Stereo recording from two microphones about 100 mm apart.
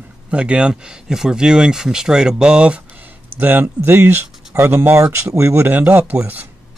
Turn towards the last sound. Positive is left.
turn(degrees=-20)  # may be behind; listen again after turning